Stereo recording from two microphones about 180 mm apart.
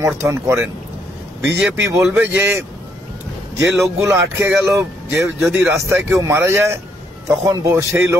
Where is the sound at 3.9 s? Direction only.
15° right (ahead or behind).